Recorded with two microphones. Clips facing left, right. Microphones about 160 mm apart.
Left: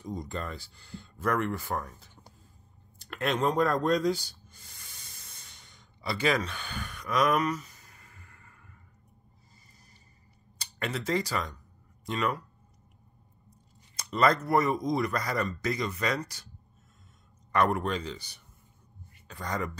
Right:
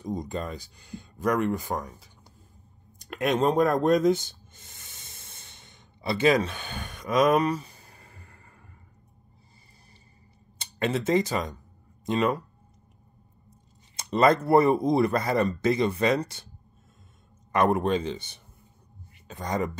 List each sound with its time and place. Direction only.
0.0 s speech: 20° right (ahead or behind)
3.0 s a sound: 15° right (ahead or behind); by 8.6 s 30° right (ahead or behind)
10.6 s a man's voice: 25° right (ahead or behind)
13.5 s speech: 25° right (ahead or behind)
17.5 s a man's voice: 20° right (ahead or behind)